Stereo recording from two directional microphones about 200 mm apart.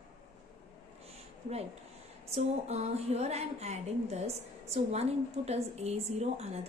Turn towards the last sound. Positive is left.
turn(degrees=-30)  # may be behind; listen again after turning